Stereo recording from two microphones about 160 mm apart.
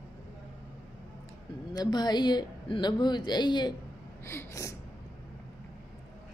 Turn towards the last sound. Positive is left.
turn(degrees=20)  # may be behind; listen again after turning